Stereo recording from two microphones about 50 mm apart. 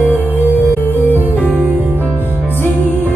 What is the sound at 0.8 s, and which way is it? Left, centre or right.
Music, left.